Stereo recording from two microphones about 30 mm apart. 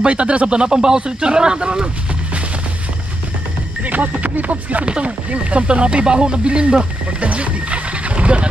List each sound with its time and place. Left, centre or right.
0.0 s speech: right
0.6 s speech: right
3.8 s music: right
4.2 s speech: right
5.0 s speech: right
7.2 s a sound: right